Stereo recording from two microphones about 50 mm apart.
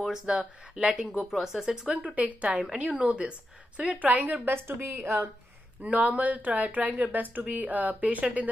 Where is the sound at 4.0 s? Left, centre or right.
Right.